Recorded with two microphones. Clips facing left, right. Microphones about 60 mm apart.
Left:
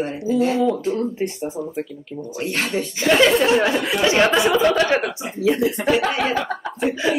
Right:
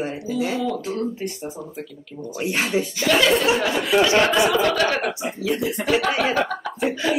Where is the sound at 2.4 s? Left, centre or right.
Centre.